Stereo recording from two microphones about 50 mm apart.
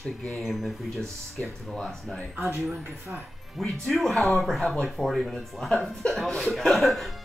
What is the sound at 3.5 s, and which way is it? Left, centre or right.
Speech, centre.